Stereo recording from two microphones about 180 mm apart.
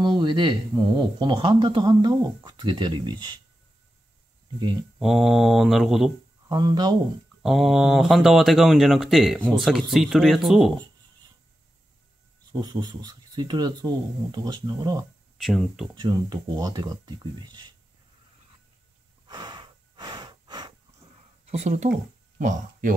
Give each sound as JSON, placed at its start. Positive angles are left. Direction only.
{"t": 0.0, "sound": "speech", "side_deg": -25}
{"t": 4.9, "sound": "speech", "side_deg": 0}
{"t": 6.5, "sound": "speech", "side_deg": -20}
{"t": 7.4, "sound": "speech", "side_deg": 0}
{"t": 12.5, "sound": "speech", "side_deg": -25}
{"t": 15.3, "sound": "speech", "side_deg": 0}
{"t": 16.0, "sound": "speech", "side_deg": -25}
{"t": 19.2, "sound": "breathing", "side_deg": -25}
{"t": 21.5, "sound": "speech", "side_deg": -40}